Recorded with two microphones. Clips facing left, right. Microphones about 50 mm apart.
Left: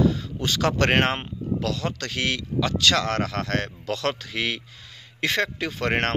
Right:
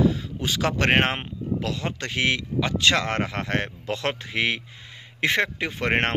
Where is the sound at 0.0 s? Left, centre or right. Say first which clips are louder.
Even; centre.